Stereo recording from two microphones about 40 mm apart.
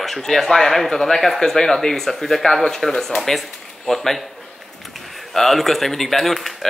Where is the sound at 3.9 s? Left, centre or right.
Centre.